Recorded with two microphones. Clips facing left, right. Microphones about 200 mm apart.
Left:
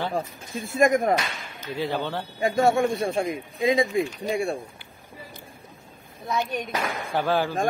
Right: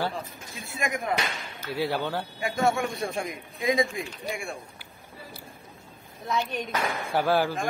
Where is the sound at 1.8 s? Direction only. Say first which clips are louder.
Even; 10° right (ahead or behind).